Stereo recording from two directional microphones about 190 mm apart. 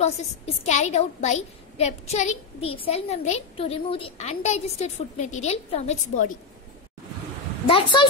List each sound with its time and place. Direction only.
0.7 s a child's voice: 35° left (ahead or behind)
7.6 s speech: 25° left (ahead or behind)